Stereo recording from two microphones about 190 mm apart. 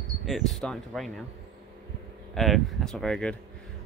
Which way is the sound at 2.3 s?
Centre (ahead or behind).